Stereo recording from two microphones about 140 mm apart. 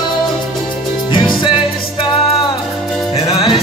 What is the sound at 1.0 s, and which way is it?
Music, 35° left (ahead or behind).